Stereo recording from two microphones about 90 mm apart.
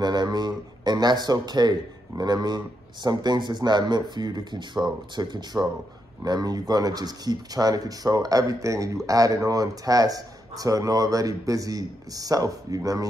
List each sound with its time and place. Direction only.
0.0 s speech: 50° right (ahead or behind)